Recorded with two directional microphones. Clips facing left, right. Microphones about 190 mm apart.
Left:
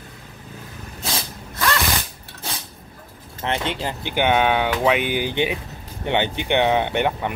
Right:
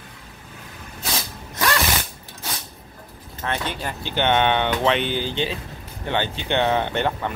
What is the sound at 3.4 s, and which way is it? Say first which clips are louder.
Speech: left 3 dB; 20° left (ahead or behind).